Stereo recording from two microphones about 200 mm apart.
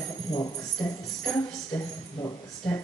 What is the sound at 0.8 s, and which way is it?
Speech, 5° left (ahead or behind).